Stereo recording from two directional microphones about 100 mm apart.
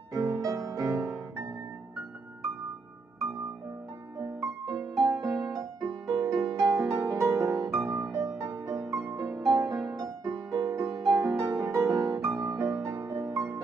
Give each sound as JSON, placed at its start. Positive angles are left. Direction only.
{"t": 0.1, "sound": "music", "side_deg": -30}
{"t": 4.2, "sound": "music", "side_deg": -35}
{"t": 4.7, "sound": "music", "side_deg": 0}
{"t": 5.6, "sound": "music", "side_deg": -30}